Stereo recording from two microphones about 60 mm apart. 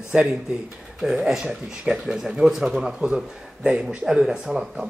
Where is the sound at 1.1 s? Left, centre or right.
Centre.